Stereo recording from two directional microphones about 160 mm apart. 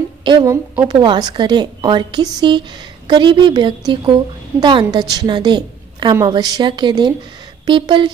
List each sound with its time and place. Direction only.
0.2 s a woman's voice: 30° right (ahead or behind)